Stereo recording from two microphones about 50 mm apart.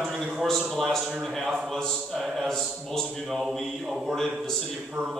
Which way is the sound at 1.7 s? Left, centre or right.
Centre.